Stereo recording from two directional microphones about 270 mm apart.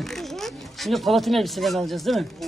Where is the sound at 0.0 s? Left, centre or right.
Centre.